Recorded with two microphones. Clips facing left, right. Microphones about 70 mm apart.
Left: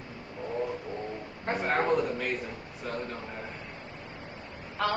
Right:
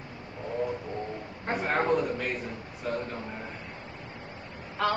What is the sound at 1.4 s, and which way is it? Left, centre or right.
A man's voice, centre.